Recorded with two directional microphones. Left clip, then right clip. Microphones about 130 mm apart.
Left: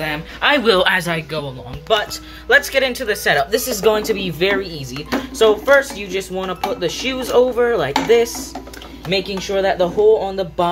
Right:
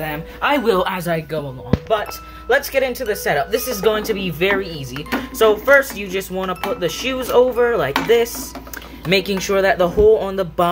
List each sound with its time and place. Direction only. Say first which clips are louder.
0.0 s speech: left 3 dB; 10° right (ahead or behind)
0.7 s speech: left 3 dB; centre (ahead or behind)
2.5 s speech: left 3 dB; 10° right (ahead or behind)
9.1 s speech: right 2 dB; 40° right (ahead or behind)